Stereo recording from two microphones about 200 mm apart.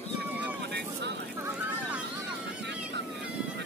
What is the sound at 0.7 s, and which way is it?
Speech, 55° right (ahead or behind).